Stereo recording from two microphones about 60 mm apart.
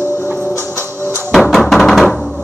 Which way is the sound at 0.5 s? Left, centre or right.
Right.